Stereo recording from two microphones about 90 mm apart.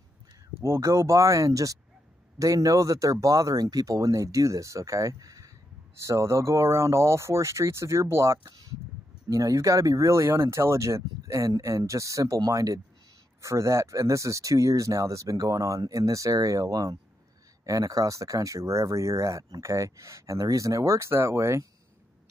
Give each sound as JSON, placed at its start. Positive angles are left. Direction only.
{"t": 0.6, "sound": "speech", "side_deg": -30}